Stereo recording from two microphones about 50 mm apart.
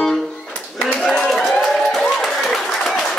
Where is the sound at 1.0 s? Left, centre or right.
Centre.